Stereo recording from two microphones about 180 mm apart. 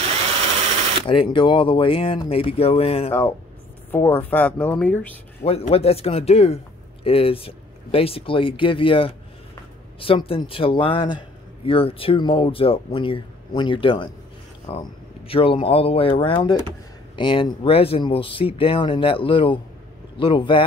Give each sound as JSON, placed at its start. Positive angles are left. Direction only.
{"t": 1.0, "sound": "speech", "side_deg": 30}
{"t": 3.1, "sound": "speech", "side_deg": 15}
{"t": 5.4, "sound": "a man's voice", "side_deg": 35}